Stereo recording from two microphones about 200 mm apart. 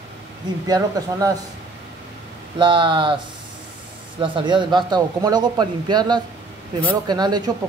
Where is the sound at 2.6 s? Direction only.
25° right (ahead or behind).